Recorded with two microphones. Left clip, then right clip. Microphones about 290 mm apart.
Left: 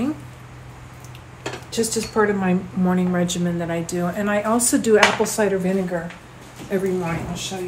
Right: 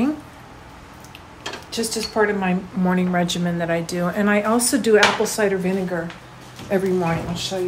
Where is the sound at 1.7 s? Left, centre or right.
Centre.